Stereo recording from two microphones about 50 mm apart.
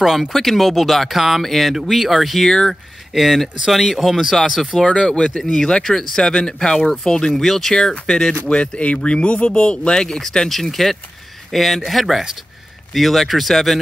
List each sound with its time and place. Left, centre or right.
0.0 s speech: centre
4.8 s speech: centre
5.4 s speech: centre